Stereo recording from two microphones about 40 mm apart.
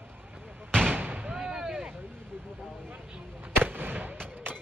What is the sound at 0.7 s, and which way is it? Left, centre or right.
Fireworks, centre.